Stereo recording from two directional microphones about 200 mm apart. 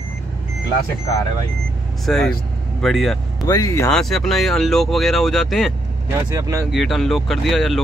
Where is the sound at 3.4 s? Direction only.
15° left (ahead or behind).